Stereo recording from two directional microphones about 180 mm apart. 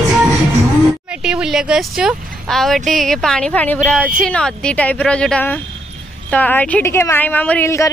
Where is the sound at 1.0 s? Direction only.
5° right (ahead or behind).